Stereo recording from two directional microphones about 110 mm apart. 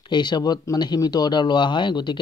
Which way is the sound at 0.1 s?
40° left (ahead or behind).